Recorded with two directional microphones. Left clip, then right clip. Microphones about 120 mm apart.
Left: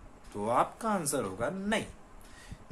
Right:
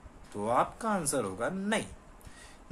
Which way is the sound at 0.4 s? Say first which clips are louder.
Even; 15° right (ahead or behind).